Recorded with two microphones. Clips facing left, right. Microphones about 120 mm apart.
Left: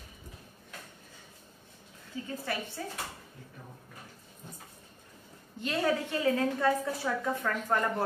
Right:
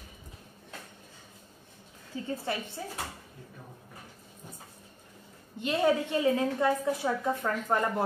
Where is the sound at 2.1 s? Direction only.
30° right (ahead or behind).